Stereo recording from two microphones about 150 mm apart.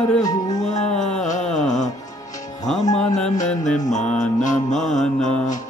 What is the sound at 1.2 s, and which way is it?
Music, 55° left (ahead or behind).